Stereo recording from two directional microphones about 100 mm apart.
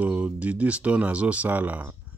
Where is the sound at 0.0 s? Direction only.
15° right (ahead or behind).